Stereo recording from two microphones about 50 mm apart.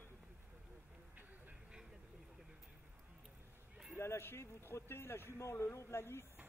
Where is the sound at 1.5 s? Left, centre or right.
Centre.